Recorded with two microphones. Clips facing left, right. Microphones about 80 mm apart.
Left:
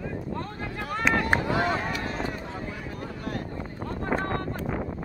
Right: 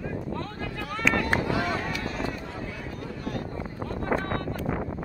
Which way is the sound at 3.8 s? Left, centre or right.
Left.